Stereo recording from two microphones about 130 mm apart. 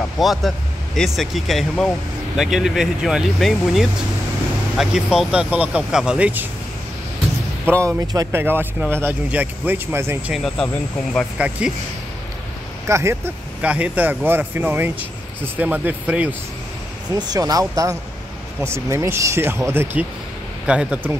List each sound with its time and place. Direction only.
0.2 s speech: centre (ahead or behind)
7.6 s speech: 20° right (ahead or behind)
10.3 s speech: centre (ahead or behind)
11.3 s speech: 10° right (ahead or behind)
12.8 s speech: 20° right (ahead or behind)
17.1 s speech: 30° right (ahead or behind); by 21.1 s 10° right (ahead or behind)